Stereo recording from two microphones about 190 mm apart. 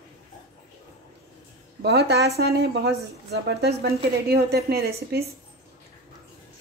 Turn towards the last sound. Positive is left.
turn(degrees=-55)  # may be behind; listen again after turning